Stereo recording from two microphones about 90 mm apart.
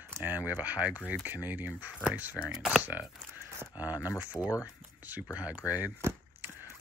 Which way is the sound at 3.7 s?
20° right (ahead or behind).